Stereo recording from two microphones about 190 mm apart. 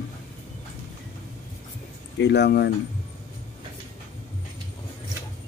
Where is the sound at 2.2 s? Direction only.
65° left (ahead or behind).